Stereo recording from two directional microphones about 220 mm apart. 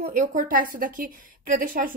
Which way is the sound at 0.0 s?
35° right (ahead or behind).